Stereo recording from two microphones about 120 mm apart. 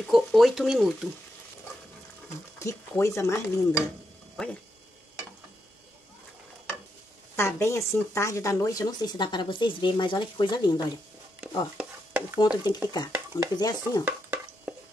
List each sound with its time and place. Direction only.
0.0 s speech: centre (ahead or behind)
2.2 s speech: 25° left (ahead or behind)
4.4 s speech: centre (ahead or behind)
7.3 s speech: 20° left (ahead or behind); by 11.0 s 40° left (ahead or behind)
11.4 s a sound: 10° right (ahead or behind)
12.4 s speech: 35° left (ahead or behind)